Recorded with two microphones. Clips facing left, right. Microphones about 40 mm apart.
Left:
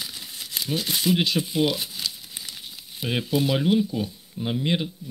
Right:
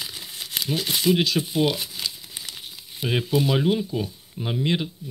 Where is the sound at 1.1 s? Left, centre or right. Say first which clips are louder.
Right 2 dB; centre.